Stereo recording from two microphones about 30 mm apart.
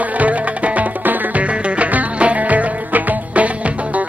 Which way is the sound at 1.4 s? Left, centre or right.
Right.